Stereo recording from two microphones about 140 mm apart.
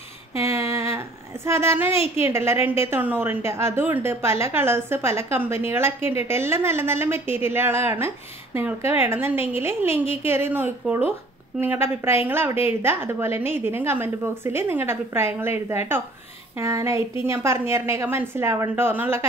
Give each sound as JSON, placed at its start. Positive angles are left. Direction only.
{"t": 0.4, "sound": "a sound", "side_deg": -20}
{"t": 2.2, "sound": "a woman's voice", "side_deg": -20}
{"t": 16.5, "sound": "a woman's voice", "side_deg": -20}